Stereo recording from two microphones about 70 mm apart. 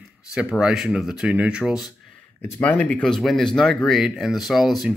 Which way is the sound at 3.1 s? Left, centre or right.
Centre.